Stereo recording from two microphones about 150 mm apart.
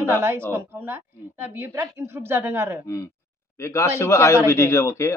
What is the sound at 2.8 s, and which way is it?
A man's voice, 20° left (ahead or behind).